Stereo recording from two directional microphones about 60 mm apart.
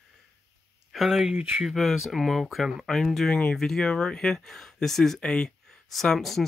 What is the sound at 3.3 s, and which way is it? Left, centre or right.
Speech, centre.